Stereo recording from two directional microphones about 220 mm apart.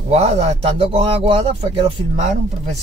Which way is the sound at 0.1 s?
30° right (ahead or behind).